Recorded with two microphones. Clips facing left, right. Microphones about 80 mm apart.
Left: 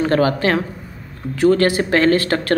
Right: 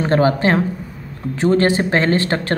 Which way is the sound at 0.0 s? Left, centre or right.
Right.